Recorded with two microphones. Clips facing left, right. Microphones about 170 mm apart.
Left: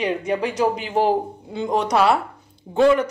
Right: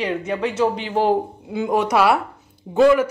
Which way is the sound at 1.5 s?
5° right (ahead or behind).